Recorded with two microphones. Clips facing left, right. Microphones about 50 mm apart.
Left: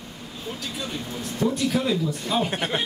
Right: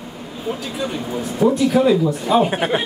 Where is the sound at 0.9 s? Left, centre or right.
Centre.